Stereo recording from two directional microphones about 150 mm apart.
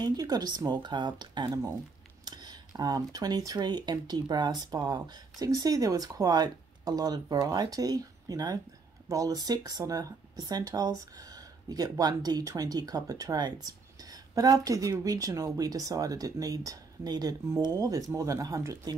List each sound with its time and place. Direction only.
0.0 s speech: 25° right (ahead or behind)